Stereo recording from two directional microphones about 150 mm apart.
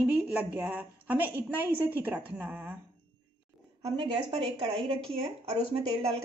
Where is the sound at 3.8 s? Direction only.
40° right (ahead or behind).